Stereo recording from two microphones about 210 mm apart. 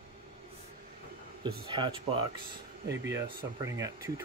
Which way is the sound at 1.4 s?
20° right (ahead or behind).